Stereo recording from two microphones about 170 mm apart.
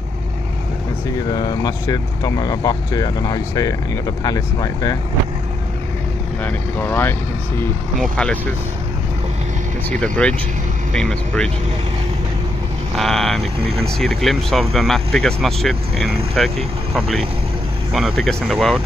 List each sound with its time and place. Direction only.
1.3 s speech: 25° left (ahead or behind)
6.4 s speech: 10° left (ahead or behind)
9.8 s speech: 5° left (ahead or behind)
12.9 s speech: centre (ahead or behind)